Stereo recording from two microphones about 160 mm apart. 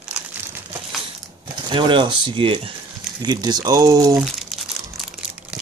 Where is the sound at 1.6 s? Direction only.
30° right (ahead or behind).